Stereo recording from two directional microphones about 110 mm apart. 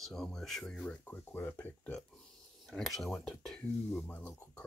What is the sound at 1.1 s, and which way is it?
Speech, 20° left (ahead or behind).